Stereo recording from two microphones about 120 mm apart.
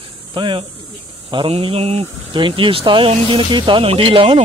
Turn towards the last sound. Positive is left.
turn(degrees=-50)  # may be behind; listen again after turning